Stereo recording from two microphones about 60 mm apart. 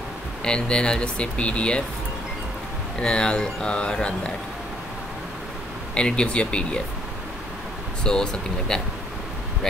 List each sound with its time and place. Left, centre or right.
0.4 s speech: centre
3.0 s speech: centre
5.9 s speech: centre
8.0 s speech: centre